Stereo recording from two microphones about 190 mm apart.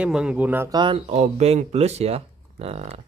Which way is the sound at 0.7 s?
30° right (ahead or behind).